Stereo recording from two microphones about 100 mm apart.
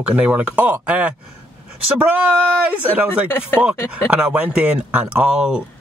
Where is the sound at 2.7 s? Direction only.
15° right (ahead or behind).